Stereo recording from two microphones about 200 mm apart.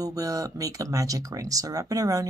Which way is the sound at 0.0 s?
15° right (ahead or behind).